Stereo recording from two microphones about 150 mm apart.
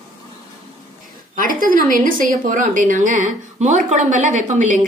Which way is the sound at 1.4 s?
70° right (ahead or behind).